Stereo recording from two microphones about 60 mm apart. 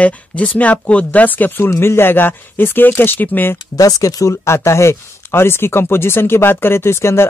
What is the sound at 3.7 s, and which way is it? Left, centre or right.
Speech, left.